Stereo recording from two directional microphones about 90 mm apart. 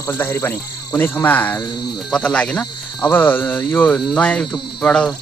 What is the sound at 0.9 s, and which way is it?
Speech, 20° left (ahead or behind).